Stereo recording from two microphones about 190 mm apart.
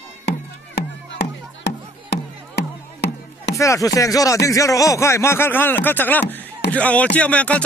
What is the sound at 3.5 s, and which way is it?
Speech, 15° left (ahead or behind).